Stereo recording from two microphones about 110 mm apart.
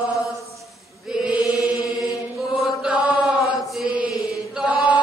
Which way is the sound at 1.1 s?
10° right (ahead or behind).